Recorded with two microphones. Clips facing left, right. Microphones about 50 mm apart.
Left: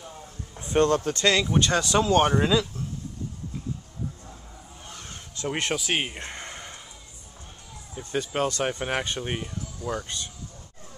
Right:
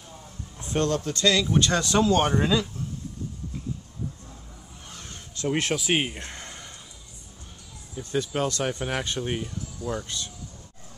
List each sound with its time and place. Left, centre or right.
0.8 s speech: left
1.5 s speech: centre
4.8 s a sound: centre
5.6 s speech: centre
6.1 s a sound: centre
7.9 s speech: centre